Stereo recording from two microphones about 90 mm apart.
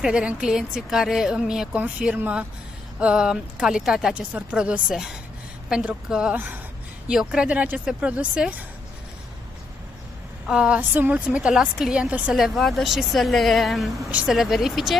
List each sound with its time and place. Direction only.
0.0 s a woman's voice: 10° right (ahead or behind)
6.3 s speech: 20° right (ahead or behind)
7.1 s a woman's voice: 10° right (ahead or behind)
10.4 s a woman's voice: 10° right (ahead or behind)
10.8 s a woman's voice: 20° right (ahead or behind); by 15.0 s 5° right (ahead or behind)